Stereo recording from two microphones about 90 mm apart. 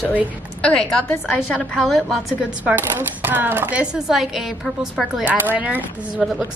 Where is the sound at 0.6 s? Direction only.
10° left (ahead or behind).